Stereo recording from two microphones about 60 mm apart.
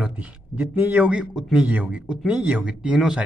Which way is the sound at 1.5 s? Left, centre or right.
Right.